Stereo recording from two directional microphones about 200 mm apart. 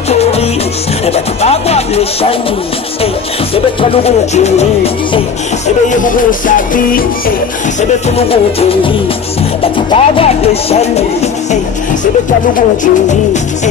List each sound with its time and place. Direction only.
0.1 s music: 30° left (ahead or behind)
3.5 s music: 30° left (ahead or behind)
5.9 s music: 40° left (ahead or behind)
8.2 s music: 30° left (ahead or behind)
12.5 s music: 40° left (ahead or behind)